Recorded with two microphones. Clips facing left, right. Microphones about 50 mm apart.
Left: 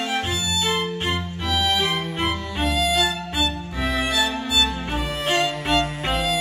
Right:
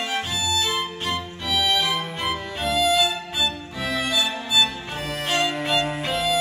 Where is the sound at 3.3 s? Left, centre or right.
Centre.